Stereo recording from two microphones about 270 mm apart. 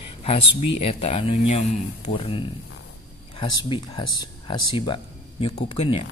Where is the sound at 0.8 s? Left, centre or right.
Left.